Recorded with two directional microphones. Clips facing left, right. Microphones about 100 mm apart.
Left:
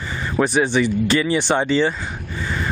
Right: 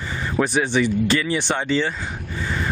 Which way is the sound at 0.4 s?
20° left (ahead or behind).